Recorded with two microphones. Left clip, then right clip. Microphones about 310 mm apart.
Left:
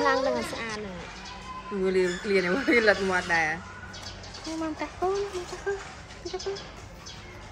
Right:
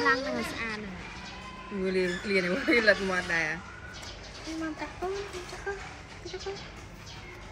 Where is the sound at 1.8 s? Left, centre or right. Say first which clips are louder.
Left 4 dB; centre.